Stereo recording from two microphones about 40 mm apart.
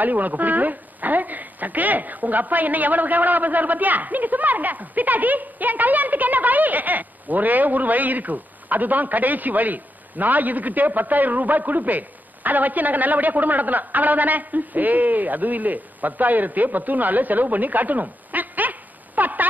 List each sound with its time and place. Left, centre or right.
0.0 s a woman's voice: right